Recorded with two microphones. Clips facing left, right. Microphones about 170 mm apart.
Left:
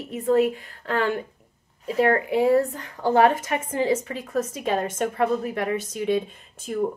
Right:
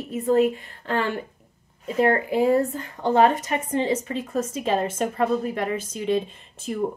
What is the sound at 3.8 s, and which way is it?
Speech, 25° right (ahead or behind).